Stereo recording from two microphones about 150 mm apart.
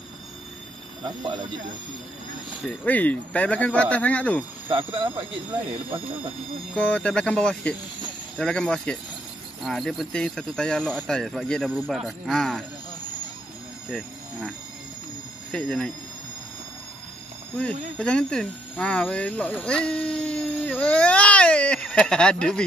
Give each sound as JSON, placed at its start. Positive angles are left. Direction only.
{"t": 2.6, "sound": "speech", "side_deg": 10}
{"t": 4.6, "sound": "speech", "side_deg": -35}
{"t": 6.7, "sound": "speech", "side_deg": 10}
{"t": 13.8, "sound": "speech", "side_deg": 0}
{"t": 15.5, "sound": "speech", "side_deg": 5}
{"t": 17.6, "sound": "speech", "side_deg": 5}